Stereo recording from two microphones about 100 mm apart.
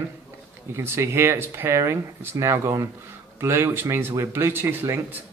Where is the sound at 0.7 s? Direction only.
25° right (ahead or behind).